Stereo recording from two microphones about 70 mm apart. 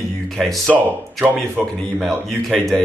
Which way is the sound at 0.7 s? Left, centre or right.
Right.